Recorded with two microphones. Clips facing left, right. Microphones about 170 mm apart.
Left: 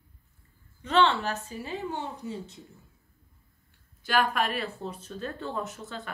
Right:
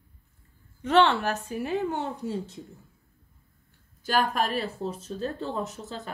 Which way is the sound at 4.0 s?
40° right (ahead or behind).